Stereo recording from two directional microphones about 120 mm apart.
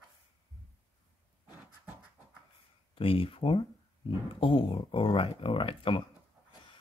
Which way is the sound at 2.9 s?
50° left (ahead or behind).